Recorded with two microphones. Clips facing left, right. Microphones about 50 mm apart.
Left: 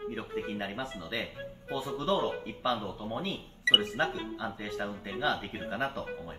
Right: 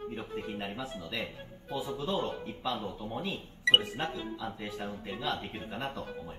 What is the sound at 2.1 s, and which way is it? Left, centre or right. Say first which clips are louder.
Speech: left 3 dB; left.